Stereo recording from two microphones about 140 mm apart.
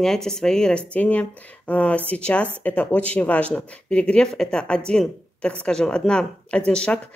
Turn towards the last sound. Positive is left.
turn(degrees=5)  # may be behind; listen again after turning